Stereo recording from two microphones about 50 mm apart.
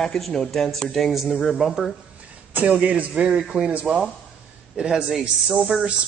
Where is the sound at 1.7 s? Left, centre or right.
Centre.